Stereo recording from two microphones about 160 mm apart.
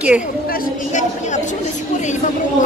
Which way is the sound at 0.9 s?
50° left (ahead or behind).